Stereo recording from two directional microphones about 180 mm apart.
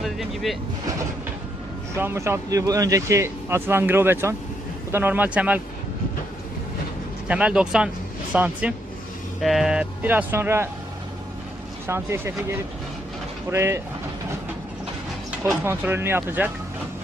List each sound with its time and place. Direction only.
0.0 s speech: centre (ahead or behind)
2.0 s speech: 15° right (ahead or behind)
7.2 s speech: 5° right (ahead or behind)
11.9 s speech: 15° right (ahead or behind)
15.6 s speech: 10° right (ahead or behind)